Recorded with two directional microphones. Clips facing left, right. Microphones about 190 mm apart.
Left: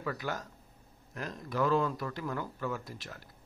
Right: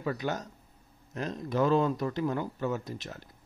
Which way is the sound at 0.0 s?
25° right (ahead or behind).